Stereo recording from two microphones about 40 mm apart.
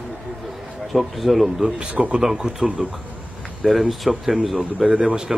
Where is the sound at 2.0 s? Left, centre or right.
Centre.